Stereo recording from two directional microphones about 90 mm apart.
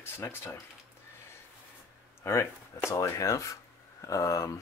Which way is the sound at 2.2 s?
30° left (ahead or behind).